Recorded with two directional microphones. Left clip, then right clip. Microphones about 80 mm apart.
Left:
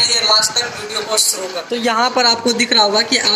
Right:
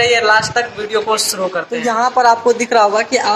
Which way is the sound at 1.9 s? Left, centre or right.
Left.